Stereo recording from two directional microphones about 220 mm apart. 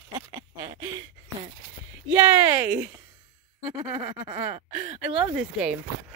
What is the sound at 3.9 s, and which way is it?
Speech, 10° right (ahead or behind).